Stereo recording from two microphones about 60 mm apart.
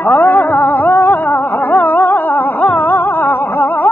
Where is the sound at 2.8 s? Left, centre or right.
Left.